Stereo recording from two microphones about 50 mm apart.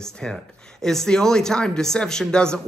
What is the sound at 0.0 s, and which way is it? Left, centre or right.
Speech, centre.